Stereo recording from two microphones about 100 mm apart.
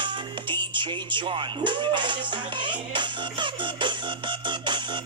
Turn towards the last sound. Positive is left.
turn(degrees=-50)  # may be behind; listen again after turning